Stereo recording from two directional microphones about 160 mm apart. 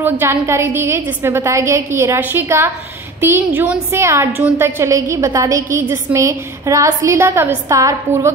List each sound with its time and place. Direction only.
0.0 s a woman's voice: 15° right (ahead or behind)